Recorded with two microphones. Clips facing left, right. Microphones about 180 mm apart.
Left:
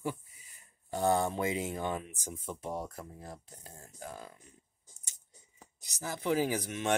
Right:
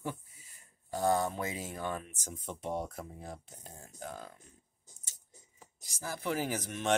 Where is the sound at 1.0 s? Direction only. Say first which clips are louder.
Left 1 dB; 25° left (ahead or behind); by 4.3 s 10° left (ahead or behind).